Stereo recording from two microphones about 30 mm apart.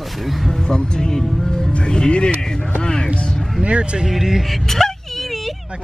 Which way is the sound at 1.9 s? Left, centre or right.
Left.